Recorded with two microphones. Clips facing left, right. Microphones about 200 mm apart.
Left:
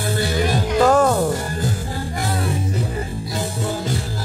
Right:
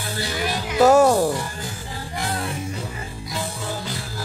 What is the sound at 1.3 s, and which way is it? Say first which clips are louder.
Music: left 5 dB; 45° left (ahead or behind).